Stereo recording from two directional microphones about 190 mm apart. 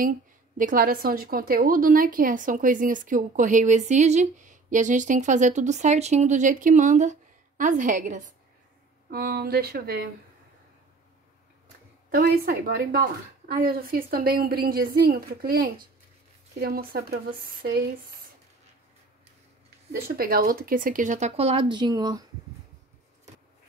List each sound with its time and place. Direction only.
0.6 s a woman's voice: 45° right (ahead or behind)
9.1 s speech: 55° right (ahead or behind)
12.1 s a woman's voice: 50° right (ahead or behind)
19.9 s a woman's voice: 50° right (ahead or behind); by 22.2 s 20° right (ahead or behind)